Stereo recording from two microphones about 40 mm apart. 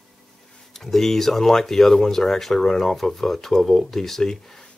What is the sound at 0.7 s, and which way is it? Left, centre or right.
Speech, centre.